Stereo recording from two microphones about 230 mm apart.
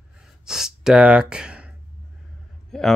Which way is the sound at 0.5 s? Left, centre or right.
Centre.